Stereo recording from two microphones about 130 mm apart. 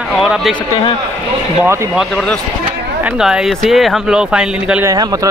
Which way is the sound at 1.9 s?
Centre (ahead or behind).